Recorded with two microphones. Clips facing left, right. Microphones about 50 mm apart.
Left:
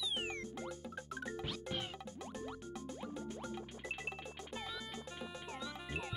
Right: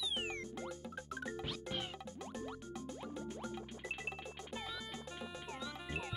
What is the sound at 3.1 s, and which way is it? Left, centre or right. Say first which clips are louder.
Music: even; right.